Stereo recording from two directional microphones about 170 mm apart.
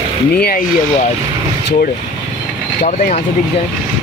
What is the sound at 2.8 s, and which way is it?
Speech, 45° left (ahead or behind).